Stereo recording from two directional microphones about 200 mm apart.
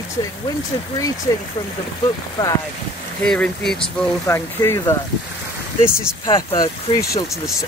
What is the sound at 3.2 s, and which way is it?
Speech, 5° left (ahead or behind).